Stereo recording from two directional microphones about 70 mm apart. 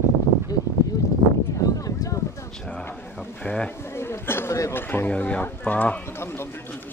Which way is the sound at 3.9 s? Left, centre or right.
Left.